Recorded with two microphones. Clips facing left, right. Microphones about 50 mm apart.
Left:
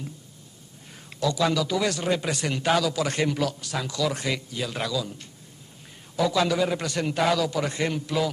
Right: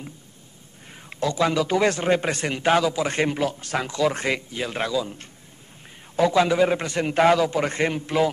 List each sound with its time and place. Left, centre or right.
0.9 s a man's voice: right